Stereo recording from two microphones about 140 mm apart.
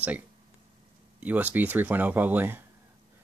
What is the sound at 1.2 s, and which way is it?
Speech, 10° right (ahead or behind).